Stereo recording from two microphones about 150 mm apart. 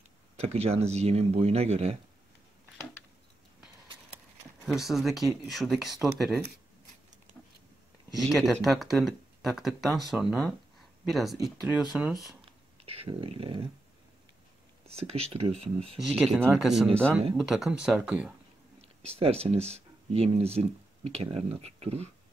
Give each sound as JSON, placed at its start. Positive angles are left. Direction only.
{"t": 0.4, "sound": "speech", "side_deg": -45}
{"t": 4.6, "sound": "speech", "side_deg": 0}
{"t": 8.2, "sound": "speech", "side_deg": 0}
{"t": 12.8, "sound": "a sound", "side_deg": -40}
{"t": 15.0, "sound": "speech", "side_deg": -45}
{"t": 16.1, "sound": "speech", "side_deg": 0}
{"t": 18.8, "sound": "speech", "side_deg": -40}